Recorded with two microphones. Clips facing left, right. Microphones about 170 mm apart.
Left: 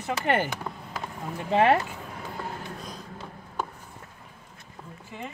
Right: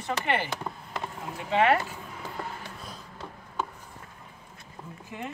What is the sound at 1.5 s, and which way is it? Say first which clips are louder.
Speech: left 2 dB; 30° left (ahead or behind).